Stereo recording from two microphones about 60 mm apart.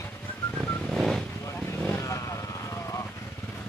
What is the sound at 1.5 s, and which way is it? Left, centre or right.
Vehicle, left.